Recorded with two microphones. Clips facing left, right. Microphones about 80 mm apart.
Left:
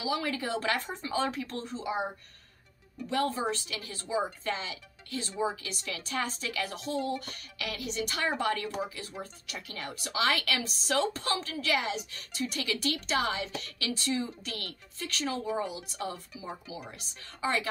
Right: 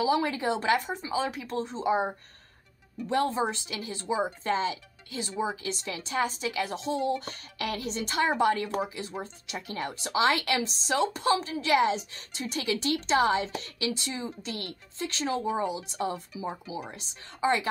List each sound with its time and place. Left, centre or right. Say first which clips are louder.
0.0 s speech: right 6 dB; right